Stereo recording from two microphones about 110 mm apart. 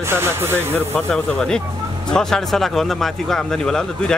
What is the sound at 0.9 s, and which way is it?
A man's voice, 5° left (ahead or behind).